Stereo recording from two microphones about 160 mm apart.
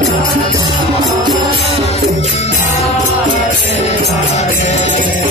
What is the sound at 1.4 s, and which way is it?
Music, 40° right (ahead or behind).